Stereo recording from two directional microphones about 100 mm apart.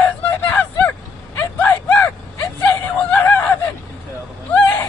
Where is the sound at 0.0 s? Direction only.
15° left (ahead or behind).